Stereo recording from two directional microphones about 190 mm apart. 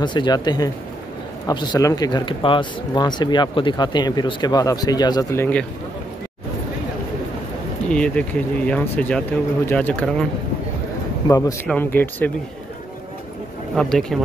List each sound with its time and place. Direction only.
0.0 s speech: 25° left (ahead or behind)
7.9 s speech: 5° left (ahead or behind)
11.2 s speech: 15° left (ahead or behind)
13.7 s speech: centre (ahead or behind)